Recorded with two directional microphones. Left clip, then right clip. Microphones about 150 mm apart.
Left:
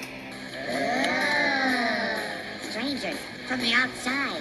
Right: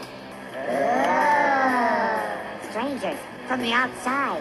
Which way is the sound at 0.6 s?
20° left (ahead or behind).